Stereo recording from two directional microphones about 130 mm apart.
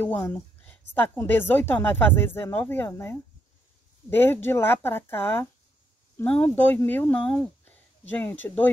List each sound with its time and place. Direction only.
0.0 s a woman's voice: 15° left (ahead or behind)